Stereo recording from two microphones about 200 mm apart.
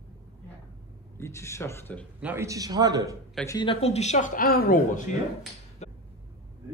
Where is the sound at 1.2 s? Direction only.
15° left (ahead or behind).